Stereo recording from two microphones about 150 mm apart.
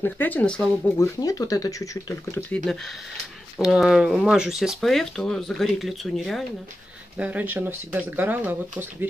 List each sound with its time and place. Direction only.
0.0 s speech: 10° left (ahead or behind)
0.9 s speech: 20° left (ahead or behind)
2.5 s speech: centre (ahead or behind)
7.2 s speech: 10° right (ahead or behind)